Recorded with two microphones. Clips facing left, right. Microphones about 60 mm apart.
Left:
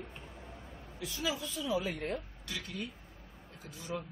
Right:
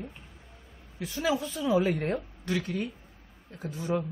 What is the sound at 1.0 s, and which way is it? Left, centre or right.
A woman's voice, right.